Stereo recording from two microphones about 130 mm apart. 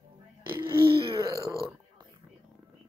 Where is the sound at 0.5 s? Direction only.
40° right (ahead or behind).